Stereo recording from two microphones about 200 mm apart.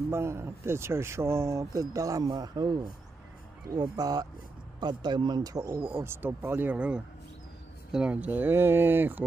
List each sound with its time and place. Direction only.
0.1 s speech: 10° right (ahead or behind)
6.0 s speech: 10° right (ahead or behind)